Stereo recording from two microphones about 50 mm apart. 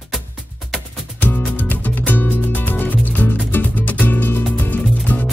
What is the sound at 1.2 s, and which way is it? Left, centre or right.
Music, left.